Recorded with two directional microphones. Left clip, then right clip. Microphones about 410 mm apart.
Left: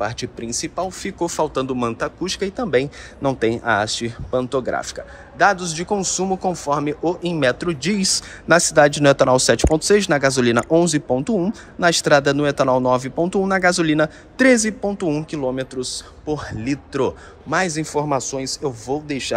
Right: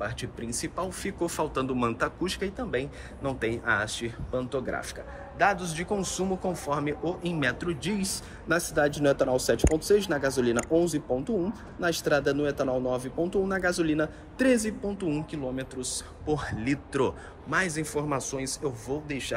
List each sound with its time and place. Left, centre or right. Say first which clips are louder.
0.0 s a man's voice: left 9 dB; centre